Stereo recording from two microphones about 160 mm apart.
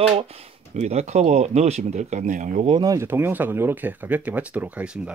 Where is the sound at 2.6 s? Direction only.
25° right (ahead or behind); by 5.1 s 10° right (ahead or behind).